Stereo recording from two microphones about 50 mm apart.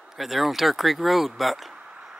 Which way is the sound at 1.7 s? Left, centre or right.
Centre.